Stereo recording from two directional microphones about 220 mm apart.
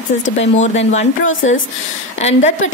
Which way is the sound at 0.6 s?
30° left (ahead or behind).